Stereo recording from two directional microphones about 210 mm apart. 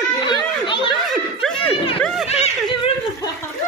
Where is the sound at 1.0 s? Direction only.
Centre (ahead or behind).